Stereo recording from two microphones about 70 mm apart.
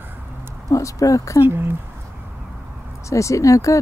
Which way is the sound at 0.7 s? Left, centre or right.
Left.